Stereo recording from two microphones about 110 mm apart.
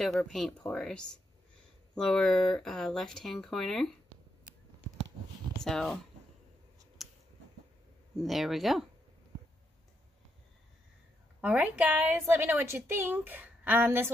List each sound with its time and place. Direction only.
0.0 s speech: 5° left (ahead or behind)
2.0 s speech: centre (ahead or behind)
5.6 s speech: 5° left (ahead or behind)
7.0 s scissors: centre (ahead or behind)
8.2 s speech: centre (ahead or behind)
11.4 s a woman's voice: 15° right (ahead or behind)